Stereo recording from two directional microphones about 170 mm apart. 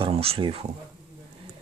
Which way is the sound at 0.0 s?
35° right (ahead or behind).